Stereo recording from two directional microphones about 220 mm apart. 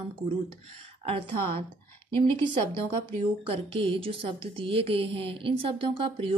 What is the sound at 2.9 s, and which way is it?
Speech, 25° right (ahead or behind).